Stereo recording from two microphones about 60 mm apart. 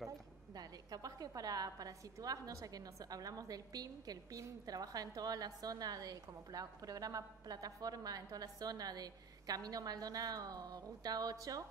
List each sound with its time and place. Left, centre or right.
0.6 s a woman's voice: right